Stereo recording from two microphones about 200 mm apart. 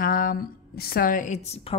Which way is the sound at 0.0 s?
45° left (ahead or behind).